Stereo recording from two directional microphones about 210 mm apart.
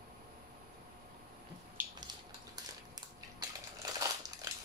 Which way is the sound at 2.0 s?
20° right (ahead or behind).